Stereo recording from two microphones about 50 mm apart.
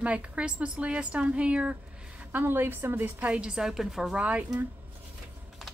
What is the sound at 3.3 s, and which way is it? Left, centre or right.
Speech, centre.